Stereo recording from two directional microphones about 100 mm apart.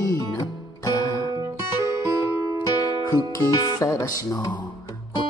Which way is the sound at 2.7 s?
40° left (ahead or behind).